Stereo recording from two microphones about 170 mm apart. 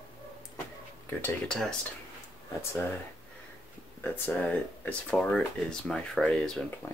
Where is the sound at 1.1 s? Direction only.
10° left (ahead or behind).